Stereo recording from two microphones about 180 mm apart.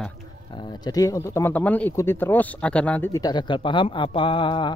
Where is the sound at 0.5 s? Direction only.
25° left (ahead or behind).